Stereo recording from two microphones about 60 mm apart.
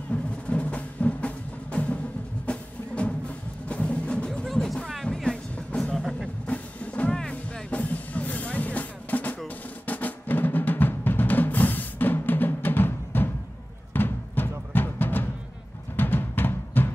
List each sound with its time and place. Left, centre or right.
0.1 s music: left
4.3 s music: centre
6.4 s music: left
7.7 s music: left
9.8 s drum: left
13.9 s music: left